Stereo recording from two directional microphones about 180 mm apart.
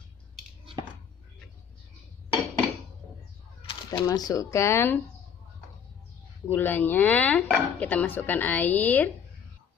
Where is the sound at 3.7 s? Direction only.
20° left (ahead or behind).